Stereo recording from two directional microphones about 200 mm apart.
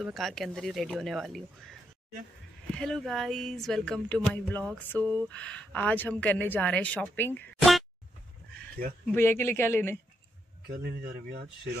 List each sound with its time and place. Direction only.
0.0 s speech: centre (ahead or behind)
9.1 s speech: 10° left (ahead or behind)
10.7 s a man's voice: 50° right (ahead or behind)